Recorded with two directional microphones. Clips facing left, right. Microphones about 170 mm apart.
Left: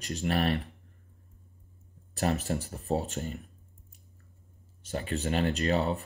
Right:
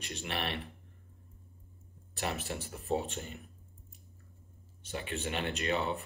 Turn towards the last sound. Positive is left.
turn(degrees=35)  # may be behind; listen again after turning